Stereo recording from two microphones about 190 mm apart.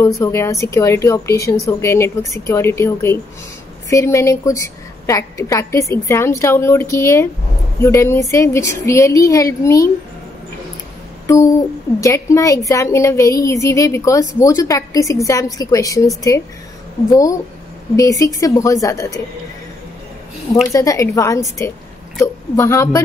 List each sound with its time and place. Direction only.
0.2 s a woman's voice: 15° left (ahead or behind)
12.0 s a woman's voice: 15° left (ahead or behind)
17.1 s a woman's voice: 20° left (ahead or behind)
20.6 s a woman's voice: 15° left (ahead or behind)